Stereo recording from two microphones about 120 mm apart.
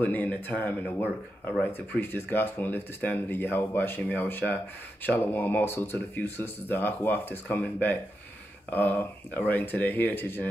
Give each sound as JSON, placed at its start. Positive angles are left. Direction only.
{"t": 0.0, "sound": "speech", "side_deg": 15}